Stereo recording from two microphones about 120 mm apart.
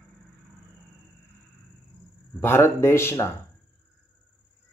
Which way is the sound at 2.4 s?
20° left (ahead or behind).